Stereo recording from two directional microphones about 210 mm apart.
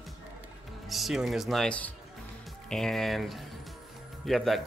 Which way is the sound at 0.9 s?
Centre (ahead or behind).